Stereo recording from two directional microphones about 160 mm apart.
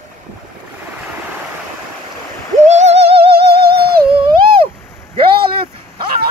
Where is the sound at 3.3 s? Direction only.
80° right.